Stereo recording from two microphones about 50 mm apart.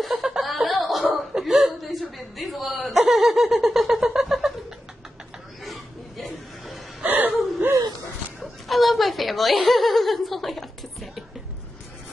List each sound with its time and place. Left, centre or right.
0.0 s snicker: centre
1.1 s chuckle: centre
2.9 s laughter: centre
5.6 s chuckle: centre
7.1 s whimper: right
8.4 s chuckle: centre
9.7 s cough: centre